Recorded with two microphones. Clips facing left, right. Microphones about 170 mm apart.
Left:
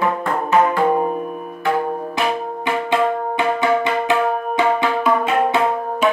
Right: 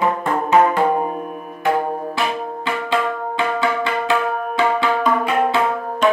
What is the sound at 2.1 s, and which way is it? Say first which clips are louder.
Music: left 1 dB; 20° left (ahead or behind).